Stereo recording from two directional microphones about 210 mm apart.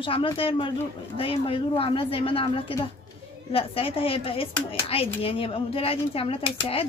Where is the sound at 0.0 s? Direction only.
25° left (ahead or behind).